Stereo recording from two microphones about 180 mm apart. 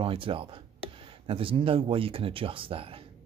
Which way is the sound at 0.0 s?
30° right (ahead or behind).